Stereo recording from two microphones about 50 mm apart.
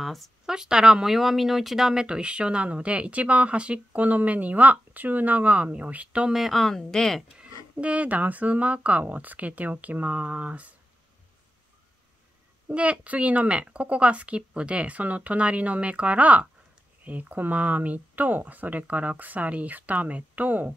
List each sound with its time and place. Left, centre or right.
0.0 s speech: centre
0.5 s speech: centre; by 6.2 s right
6.3 s speech: centre
7.3 s speech: right
12.6 s speech: right